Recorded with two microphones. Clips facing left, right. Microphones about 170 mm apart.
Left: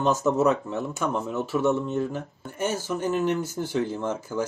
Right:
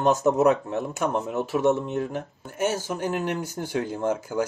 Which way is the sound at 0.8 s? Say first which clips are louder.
Right 1 dB; 40° right (ahead or behind).